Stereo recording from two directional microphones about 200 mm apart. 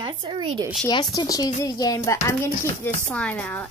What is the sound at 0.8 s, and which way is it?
Speech, 20° left (ahead or behind).